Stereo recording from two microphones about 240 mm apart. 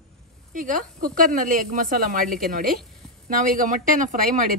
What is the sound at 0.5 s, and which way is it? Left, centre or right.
A woman's voice, right.